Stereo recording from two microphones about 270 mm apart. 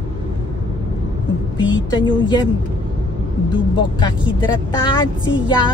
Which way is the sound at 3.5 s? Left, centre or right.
Centre.